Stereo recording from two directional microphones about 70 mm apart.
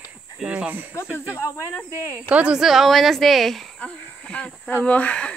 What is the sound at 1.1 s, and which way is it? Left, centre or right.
Speech, left.